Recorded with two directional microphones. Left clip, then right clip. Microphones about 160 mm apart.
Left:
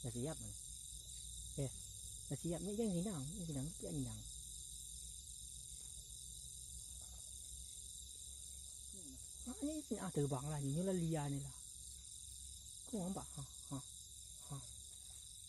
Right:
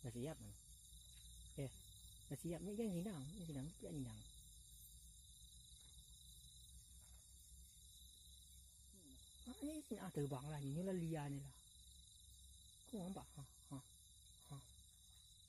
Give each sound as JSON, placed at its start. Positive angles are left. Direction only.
{"t": 0.0, "sound": "cricket", "side_deg": -25}
{"t": 2.2, "sound": "speech", "side_deg": -5}
{"t": 9.4, "sound": "speech", "side_deg": -5}
{"t": 12.9, "sound": "a sound", "side_deg": 0}